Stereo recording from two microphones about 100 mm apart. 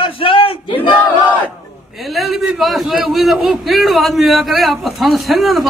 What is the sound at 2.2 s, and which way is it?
Speech, centre (ahead or behind).